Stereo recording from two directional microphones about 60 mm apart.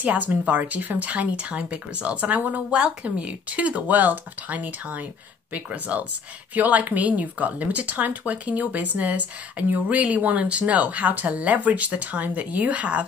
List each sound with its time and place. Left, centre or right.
0.0 s speech: right